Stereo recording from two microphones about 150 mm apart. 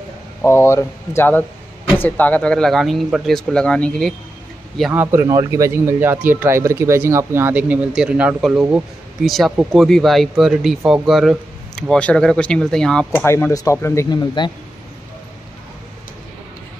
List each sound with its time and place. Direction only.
0.4 s speech: 15° left (ahead or behind)
4.9 s speech: 15° right (ahead or behind); by 13.2 s 5° left (ahead or behind)
13.2 s speech: 15° left (ahead or behind)